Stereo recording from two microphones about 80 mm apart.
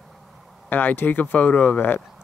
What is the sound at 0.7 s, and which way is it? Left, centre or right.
Speech, left.